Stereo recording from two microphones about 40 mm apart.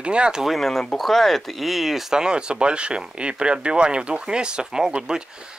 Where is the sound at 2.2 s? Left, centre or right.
Right.